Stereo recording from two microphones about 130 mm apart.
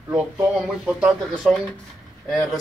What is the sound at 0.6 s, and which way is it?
Speech, 5° right (ahead or behind).